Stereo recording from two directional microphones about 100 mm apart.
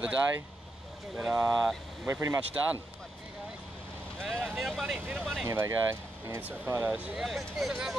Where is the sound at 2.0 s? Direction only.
30° right (ahead or behind).